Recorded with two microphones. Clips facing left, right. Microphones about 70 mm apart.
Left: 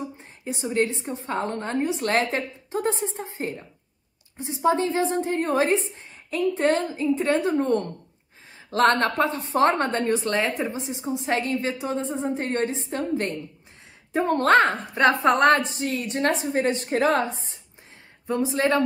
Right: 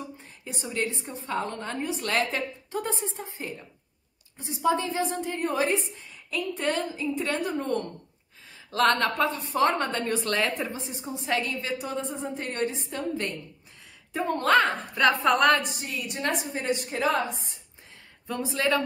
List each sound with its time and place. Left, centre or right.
0.2 s a woman's voice: left
14.1 s a woman's voice: left
15.0 s a woman's voice: left
18.3 s a woman's voice: left